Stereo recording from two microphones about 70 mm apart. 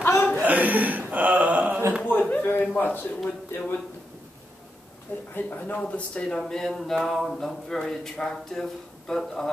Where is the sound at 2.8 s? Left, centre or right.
Left.